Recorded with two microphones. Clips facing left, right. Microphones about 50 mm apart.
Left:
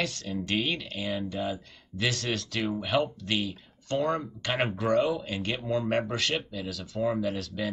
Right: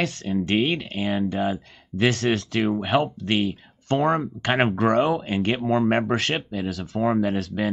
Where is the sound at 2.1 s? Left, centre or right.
Right.